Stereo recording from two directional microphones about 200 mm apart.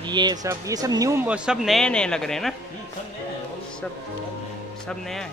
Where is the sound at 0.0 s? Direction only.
20° right (ahead or behind); by 2.5 s centre (ahead or behind).